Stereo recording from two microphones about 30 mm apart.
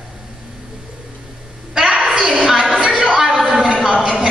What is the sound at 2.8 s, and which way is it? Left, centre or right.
Music, right.